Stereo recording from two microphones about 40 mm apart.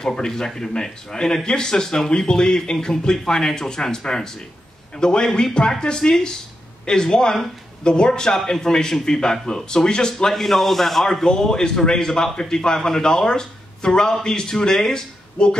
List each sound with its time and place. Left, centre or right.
0.0 s a man's voice: centre